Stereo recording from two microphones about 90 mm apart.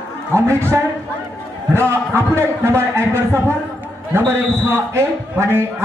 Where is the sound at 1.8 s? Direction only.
25° right (ahead or behind).